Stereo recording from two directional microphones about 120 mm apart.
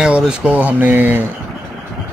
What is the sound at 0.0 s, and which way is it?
Speech, 5° right (ahead or behind).